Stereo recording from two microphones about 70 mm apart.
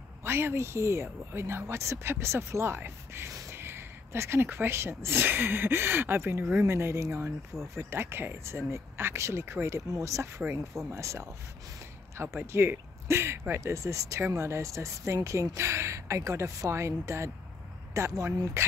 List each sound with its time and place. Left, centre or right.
0.2 s speech: right
9.8 s speech: right